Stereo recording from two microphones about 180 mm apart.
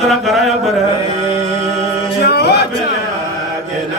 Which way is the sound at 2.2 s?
65° left (ahead or behind).